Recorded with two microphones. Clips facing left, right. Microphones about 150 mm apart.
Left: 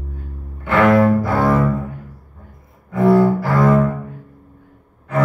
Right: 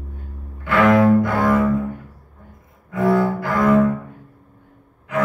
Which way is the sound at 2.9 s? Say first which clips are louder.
Left 4 dB; 30° left (ahead or behind).